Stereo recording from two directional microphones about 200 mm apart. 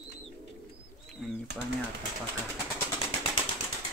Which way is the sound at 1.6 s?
Centre (ahead or behind).